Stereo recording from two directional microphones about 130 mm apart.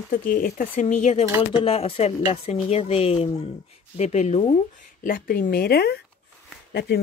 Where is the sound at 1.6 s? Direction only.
45° left (ahead or behind).